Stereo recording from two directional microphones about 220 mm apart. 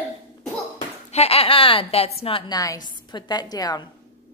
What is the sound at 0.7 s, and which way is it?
Speech, 30° left (ahead or behind).